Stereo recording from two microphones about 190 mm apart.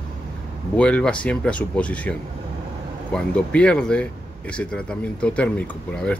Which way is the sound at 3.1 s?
5° left (ahead or behind).